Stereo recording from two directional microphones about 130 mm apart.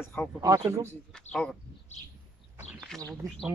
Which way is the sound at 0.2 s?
10° left (ahead or behind).